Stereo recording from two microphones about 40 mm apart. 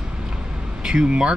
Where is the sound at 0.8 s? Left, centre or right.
Right.